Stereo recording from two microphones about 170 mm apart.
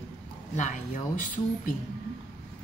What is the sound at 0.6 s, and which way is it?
Speech, 50° left (ahead or behind).